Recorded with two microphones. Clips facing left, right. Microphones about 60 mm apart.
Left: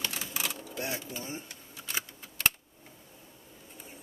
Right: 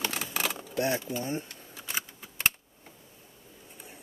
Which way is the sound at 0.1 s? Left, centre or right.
Right.